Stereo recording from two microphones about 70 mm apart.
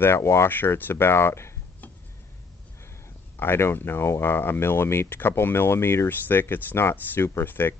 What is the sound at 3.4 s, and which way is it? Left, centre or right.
Speech, left.